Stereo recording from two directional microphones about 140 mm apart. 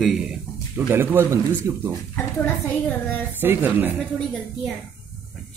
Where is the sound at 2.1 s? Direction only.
15° left (ahead or behind).